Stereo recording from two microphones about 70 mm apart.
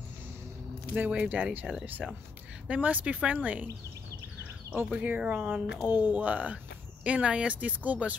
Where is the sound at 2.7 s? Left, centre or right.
Right.